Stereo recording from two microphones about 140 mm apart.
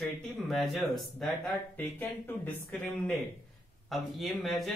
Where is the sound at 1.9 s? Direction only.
15° left (ahead or behind).